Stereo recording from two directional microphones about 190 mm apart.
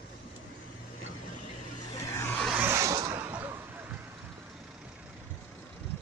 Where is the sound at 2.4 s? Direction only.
10° right (ahead or behind).